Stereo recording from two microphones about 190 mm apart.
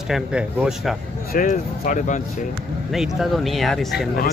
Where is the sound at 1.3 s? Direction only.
45° left (ahead or behind).